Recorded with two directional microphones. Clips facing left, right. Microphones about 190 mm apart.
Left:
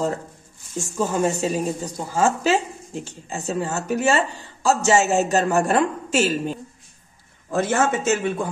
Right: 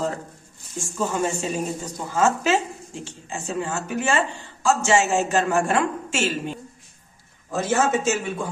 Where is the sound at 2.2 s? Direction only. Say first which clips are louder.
Left 1 dB; 35° left (ahead or behind).